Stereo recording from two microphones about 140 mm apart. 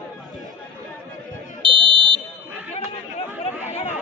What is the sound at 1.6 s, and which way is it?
Smoke detector, 35° right (ahead or behind).